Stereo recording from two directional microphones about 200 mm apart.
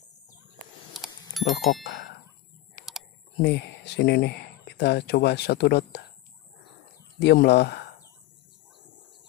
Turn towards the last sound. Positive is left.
turn(degrees=55)  # may be behind; listen again after turning